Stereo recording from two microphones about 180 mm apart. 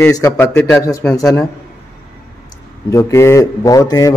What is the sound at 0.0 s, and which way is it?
A man's voice, 15° left (ahead or behind).